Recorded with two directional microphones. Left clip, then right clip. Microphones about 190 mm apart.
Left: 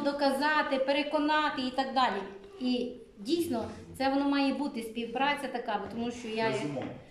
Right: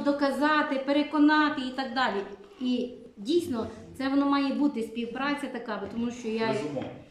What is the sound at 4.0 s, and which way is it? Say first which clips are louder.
A woman's voice: right 2 dB; 5° left (ahead or behind).